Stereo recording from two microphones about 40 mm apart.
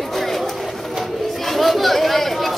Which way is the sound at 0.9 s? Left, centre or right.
Centre.